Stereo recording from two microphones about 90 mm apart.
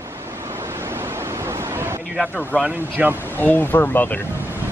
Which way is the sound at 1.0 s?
30° right (ahead or behind).